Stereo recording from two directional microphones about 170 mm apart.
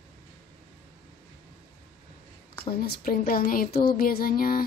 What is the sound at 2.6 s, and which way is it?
Speech, 60° left (ahead or behind).